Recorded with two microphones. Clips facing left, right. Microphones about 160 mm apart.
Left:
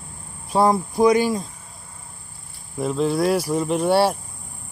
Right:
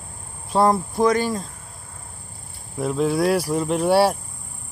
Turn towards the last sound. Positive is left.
turn(degrees=-5)  # may be behind; listen again after turning